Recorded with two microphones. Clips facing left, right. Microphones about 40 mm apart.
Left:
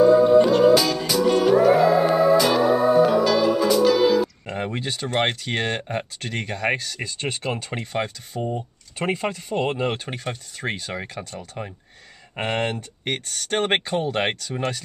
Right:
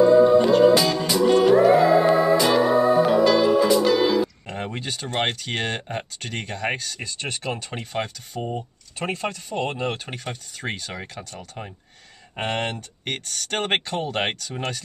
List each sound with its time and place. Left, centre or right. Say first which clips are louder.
0.0 s music: even; centre
4.5 s speech: left 3 dB; centre
8.4 s speech: left 2 dB; right
8.9 s speech: left 3 dB; centre
12.4 s speech: left 2 dB; centre